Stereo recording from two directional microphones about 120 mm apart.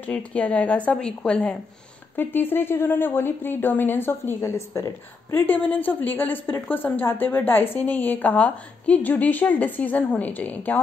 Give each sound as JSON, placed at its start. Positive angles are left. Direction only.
{"t": 0.0, "sound": "speech", "side_deg": 10}